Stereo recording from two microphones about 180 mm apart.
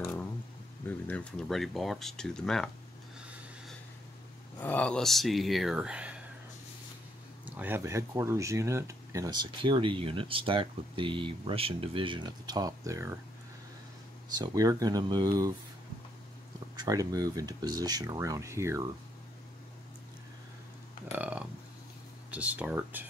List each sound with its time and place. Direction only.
0.0 s a sound: 10° left (ahead or behind)
0.8 s speech: 5° left (ahead or behind)
3.2 s snort: 5° right (ahead or behind)
4.6 s speech: 10° left (ahead or behind)
7.4 s speech: 10° right (ahead or behind)
14.4 s speech: 20° right (ahead or behind)
16.7 s speech: 20° right (ahead or behind)
21.1 s speech: 5° right (ahead or behind)